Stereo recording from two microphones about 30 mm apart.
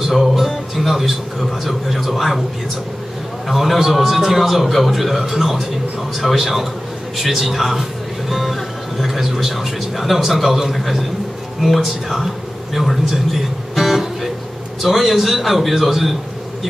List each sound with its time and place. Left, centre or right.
0.0 s speech: centre
3.4 s a man's voice: centre
8.3 s music: centre
8.9 s a man's voice: centre